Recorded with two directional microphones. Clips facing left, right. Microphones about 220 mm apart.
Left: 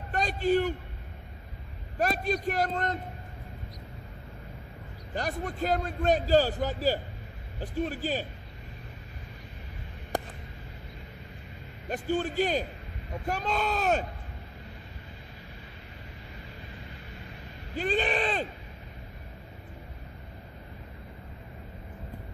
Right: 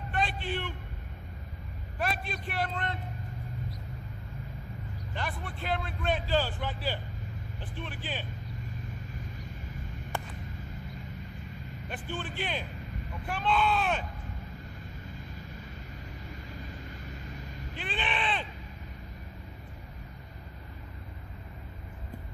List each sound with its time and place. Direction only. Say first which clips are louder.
0.1 s a man's voice: left 8 dB; 40° left (ahead or behind)
2.0 s a man's voice: left 7 dB; 40° left (ahead or behind)
5.1 s a man's voice: left 6 dB; 40° left (ahead or behind)
10.1 s a man's voice: left 6 dB; 40° left (ahead or behind)
11.9 s a man's voice: left 10 dB; 40° left (ahead or behind)
17.7 s a sound: left 8 dB; 40° left (ahead or behind)